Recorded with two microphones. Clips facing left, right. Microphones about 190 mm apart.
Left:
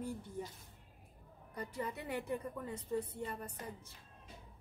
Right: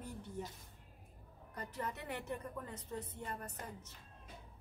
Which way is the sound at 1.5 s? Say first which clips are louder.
Left 2 dB; 10° left (ahead or behind).